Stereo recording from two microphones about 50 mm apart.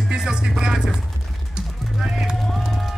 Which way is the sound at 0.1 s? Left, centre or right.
Centre.